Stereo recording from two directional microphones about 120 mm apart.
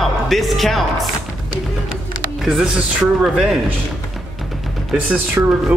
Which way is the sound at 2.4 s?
5° right (ahead or behind).